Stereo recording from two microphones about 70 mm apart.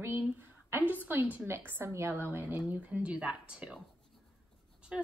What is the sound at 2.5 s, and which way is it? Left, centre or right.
A woman's voice, centre.